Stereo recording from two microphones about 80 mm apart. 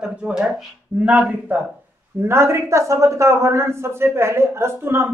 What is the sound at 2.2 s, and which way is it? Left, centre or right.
Speech, right.